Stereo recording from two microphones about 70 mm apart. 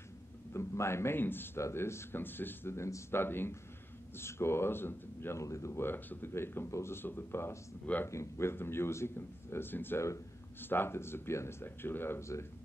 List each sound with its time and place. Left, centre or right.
0.5 s a man's voice: left
5.4 s speech: left
7.8 s speech: left
8.1 s speech: left